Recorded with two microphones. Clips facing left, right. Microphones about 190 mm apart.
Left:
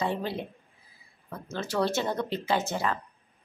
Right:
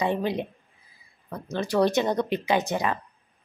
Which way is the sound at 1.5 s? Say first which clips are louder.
Right 6 dB; 15° right (ahead or behind).